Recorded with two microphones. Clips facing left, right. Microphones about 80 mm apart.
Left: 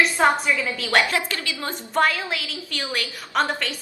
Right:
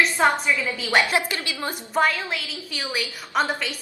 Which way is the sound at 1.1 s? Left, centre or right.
Right.